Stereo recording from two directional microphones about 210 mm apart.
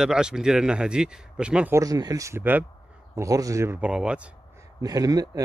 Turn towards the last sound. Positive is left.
turn(degrees=-15)  # may be behind; listen again after turning